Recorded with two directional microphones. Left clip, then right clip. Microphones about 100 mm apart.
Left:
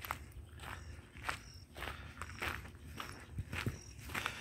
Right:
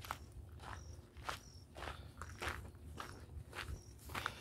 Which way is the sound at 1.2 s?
10° left (ahead or behind).